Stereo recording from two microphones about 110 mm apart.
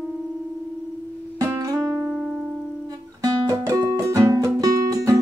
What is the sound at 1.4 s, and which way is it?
Music, 30° right (ahead or behind).